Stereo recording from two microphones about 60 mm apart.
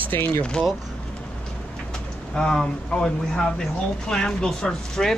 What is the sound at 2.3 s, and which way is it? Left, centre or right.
Speech, centre.